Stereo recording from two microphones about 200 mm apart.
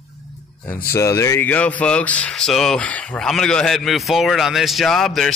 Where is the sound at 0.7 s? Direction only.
45° left (ahead or behind).